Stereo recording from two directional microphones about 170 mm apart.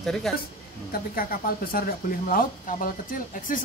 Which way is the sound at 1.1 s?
60° left (ahead or behind).